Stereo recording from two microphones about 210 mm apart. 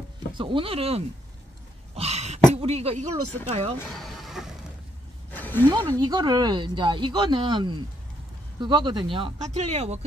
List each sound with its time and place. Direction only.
0.3 s speech: 25° right (ahead or behind)
2.0 s cough: 30° right (ahead or behind)
2.5 s speech: 30° right (ahead or behind)
4.0 s a sound: centre (ahead or behind)
5.8 s speech: 15° right (ahead or behind)